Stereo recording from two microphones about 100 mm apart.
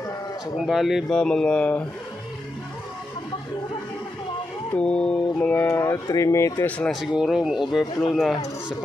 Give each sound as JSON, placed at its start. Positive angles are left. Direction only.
{"t": 0.7, "sound": "speech", "side_deg": -5}
{"t": 1.1, "sound": "mantra", "side_deg": 5}
{"t": 4.7, "sound": "music", "side_deg": 10}
{"t": 5.7, "sound": "speech", "side_deg": 30}
{"t": 6.9, "sound": "speech", "side_deg": -5}